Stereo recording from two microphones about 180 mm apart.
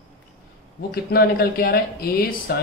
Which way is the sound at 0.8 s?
60° left (ahead or behind).